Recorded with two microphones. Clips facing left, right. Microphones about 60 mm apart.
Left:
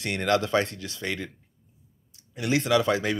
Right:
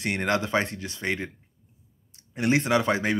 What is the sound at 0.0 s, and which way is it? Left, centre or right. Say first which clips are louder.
Speech: left 1 dB; right.